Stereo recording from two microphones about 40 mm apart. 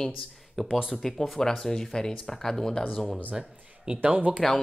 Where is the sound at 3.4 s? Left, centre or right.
Centre.